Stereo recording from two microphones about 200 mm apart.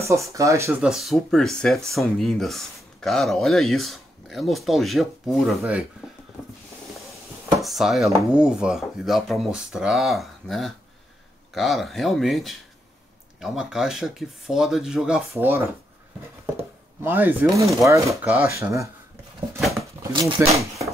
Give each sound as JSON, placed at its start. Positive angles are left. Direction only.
{"t": 0.0, "sound": "speech", "side_deg": -15}
{"t": 7.6, "sound": "speech", "side_deg": 0}
{"t": 17.0, "sound": "speech", "side_deg": -10}
{"t": 20.0, "sound": "speech", "side_deg": -20}
{"t": 20.3, "sound": "a sound", "side_deg": -15}